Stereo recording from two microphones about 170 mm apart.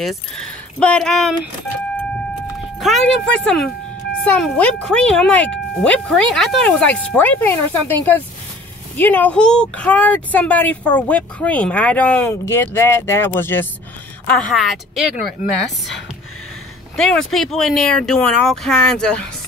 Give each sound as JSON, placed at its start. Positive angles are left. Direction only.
{"t": 0.7, "sound": "speech", "side_deg": 5}
{"t": 2.8, "sound": "speech", "side_deg": 0}
{"t": 14.2, "sound": "speech", "side_deg": 0}
{"t": 15.4, "sound": "speech", "side_deg": 50}
{"t": 16.9, "sound": "speech", "side_deg": 5}